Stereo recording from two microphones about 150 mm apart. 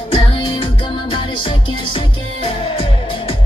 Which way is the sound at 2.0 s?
40° left (ahead or behind).